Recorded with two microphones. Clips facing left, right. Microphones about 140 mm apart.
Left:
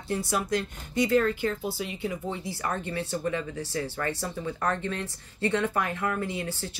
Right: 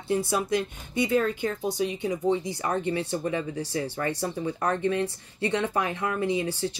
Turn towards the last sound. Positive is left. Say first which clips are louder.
# right 6 dB
turn(degrees=-15)  # may be behind; listen again after turning